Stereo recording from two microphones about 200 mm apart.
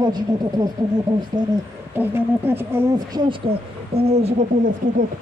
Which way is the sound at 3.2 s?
30° right (ahead or behind).